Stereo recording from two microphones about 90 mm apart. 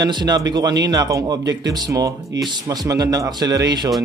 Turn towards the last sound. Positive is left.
turn(degrees=-45)  # may be behind; listen again after turning